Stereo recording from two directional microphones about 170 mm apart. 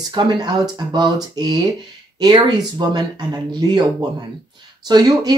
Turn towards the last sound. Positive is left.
turn(degrees=-25)  # may be behind; listen again after turning